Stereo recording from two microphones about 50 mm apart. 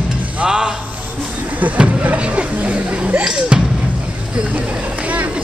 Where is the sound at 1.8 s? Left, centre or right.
Right.